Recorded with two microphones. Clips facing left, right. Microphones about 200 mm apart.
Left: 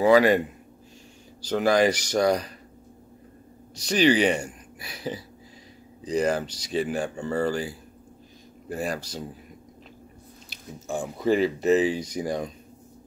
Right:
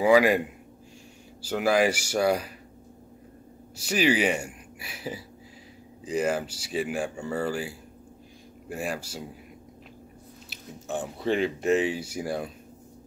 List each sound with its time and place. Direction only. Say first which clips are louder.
0.0 s speech: left 2 dB; 10° right (ahead or behind)
1.4 s speech: left 2 dB; 5° right (ahead or behind)
3.7 s speech: left 3 dB; 5° right (ahead or behind)
11.1 s speech: left 4 dB; 5° left (ahead or behind)
11.9 s speech: left 3 dB; 5° right (ahead or behind)